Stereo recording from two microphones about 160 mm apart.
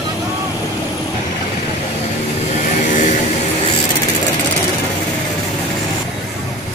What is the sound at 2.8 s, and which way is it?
Vehicle, 50° left (ahead or behind).